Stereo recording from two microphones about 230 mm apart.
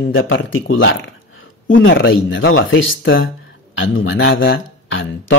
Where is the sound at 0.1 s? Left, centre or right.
Left.